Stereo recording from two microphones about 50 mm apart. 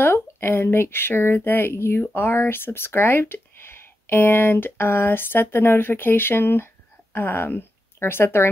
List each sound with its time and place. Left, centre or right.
0.0 s speech: left